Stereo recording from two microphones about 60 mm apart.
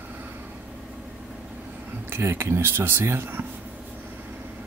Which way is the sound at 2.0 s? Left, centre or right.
Right.